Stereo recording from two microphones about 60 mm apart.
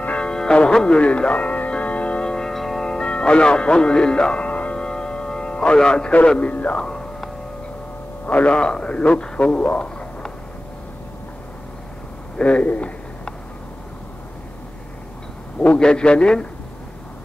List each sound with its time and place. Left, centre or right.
0.0 s music: centre
6.8 s music: centre
8.3 s a man's voice: left
12.4 s a sound: left
15.8 s a man's voice: centre